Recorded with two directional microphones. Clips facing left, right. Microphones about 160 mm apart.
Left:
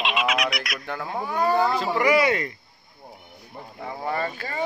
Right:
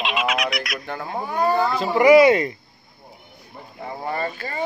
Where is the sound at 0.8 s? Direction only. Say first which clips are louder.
Right 1 dB; 15° right (ahead or behind).